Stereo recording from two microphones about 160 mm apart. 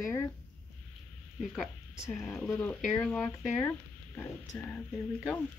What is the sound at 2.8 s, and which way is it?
Speech, 5° left (ahead or behind).